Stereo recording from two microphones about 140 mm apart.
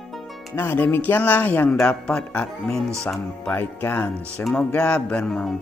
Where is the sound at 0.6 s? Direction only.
15° left (ahead or behind).